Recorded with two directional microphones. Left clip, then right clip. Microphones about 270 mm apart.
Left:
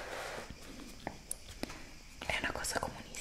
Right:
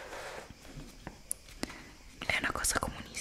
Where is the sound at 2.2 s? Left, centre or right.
Centre.